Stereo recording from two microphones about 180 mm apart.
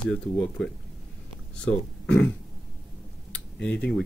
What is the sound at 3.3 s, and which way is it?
Tick-tock, 5° left (ahead or behind).